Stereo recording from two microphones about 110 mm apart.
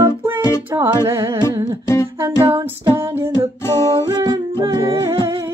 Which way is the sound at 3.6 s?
25° left (ahead or behind).